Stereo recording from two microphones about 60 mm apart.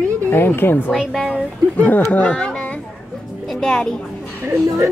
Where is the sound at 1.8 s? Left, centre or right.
Left; by 3.9 s centre.